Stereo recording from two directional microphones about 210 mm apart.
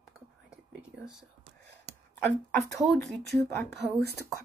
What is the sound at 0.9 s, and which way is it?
Speech, 5° right (ahead or behind).